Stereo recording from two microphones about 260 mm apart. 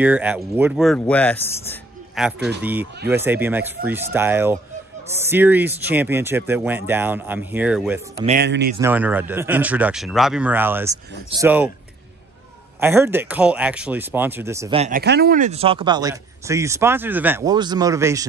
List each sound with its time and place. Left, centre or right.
0.0 s a man's voice: centre
2.1 s a man's voice: centre
8.4 s speech: right
8.7 s a man's voice: centre
12.8 s speech: centre
14.8 s speech: right; by 18.2 s centre